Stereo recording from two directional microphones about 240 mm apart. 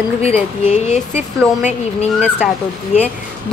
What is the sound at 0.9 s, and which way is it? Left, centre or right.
Speech, left.